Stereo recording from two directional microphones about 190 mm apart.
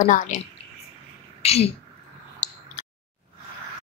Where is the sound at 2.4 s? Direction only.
35° left (ahead or behind).